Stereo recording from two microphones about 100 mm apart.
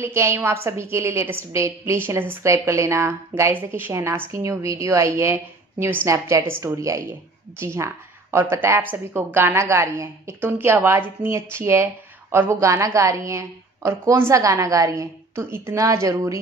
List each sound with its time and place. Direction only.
0.0 s a woman's voice: 25° right (ahead or behind)